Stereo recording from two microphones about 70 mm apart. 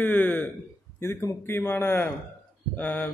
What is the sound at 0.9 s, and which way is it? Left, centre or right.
A man's voice, left.